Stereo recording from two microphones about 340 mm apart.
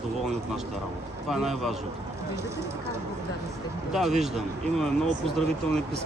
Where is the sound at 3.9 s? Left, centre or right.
Centre.